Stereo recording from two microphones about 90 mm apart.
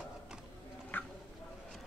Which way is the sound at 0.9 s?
20° left (ahead or behind).